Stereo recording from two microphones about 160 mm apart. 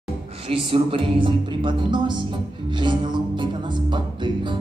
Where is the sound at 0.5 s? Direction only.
35° right (ahead or behind).